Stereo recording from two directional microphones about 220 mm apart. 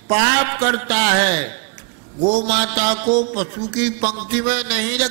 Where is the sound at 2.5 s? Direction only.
10° right (ahead or behind).